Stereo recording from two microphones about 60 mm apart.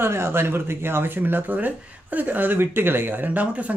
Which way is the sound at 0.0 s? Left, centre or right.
Right.